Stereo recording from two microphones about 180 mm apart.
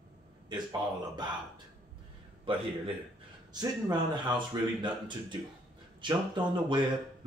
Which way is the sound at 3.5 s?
25° right (ahead or behind).